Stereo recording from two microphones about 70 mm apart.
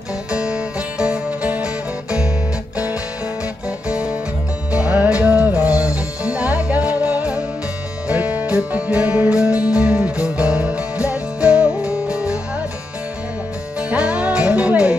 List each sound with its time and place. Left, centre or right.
0.3 s music: centre
4.7 s music: centre
13.7 s music: centre